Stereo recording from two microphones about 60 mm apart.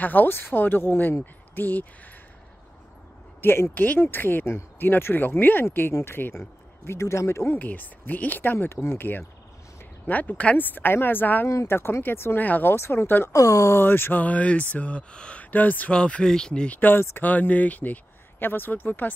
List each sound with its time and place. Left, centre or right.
0.0 s speech: left
3.3 s speech: left
3.7 s speech: left
6.9 s speech: left
7.5 s speech: left
10.0 s speech: left
11.4 s speech: left
12.4 s speech: left
12.7 s speech: left
13.3 s speech: left
13.7 s speech: left
14.2 s speech: left
15.9 s speech: centre
16.7 s speech: left